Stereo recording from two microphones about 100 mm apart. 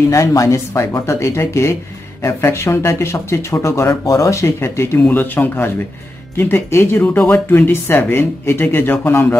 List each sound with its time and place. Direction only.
0.1 s speech: 35° left (ahead or behind)